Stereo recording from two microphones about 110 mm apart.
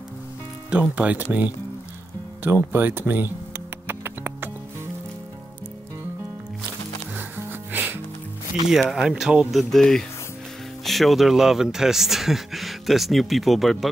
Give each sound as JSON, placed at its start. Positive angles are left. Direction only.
{"t": 0.9, "sound": "speech", "side_deg": -15}
{"t": 3.8, "sound": "music", "side_deg": -20}
{"t": 7.2, "sound": "music", "side_deg": -20}
{"t": 8.5, "sound": "speech", "side_deg": -5}